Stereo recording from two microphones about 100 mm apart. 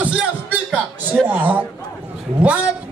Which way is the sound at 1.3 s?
20° right (ahead or behind).